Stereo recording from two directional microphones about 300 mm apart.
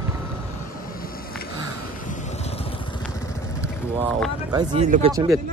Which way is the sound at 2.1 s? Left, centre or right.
Left.